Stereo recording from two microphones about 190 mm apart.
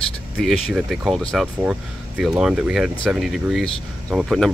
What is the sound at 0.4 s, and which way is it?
Speech, centre (ahead or behind).